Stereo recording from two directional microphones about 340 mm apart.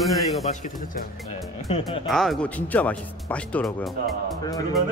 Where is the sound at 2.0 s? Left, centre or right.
Centre.